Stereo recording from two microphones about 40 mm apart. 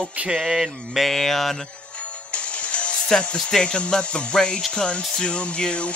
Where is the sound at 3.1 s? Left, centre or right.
Left.